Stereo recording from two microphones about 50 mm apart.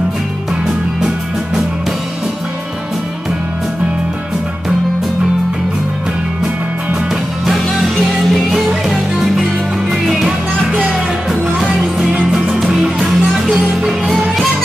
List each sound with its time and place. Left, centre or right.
7.4 s music: centre
11.6 s music: centre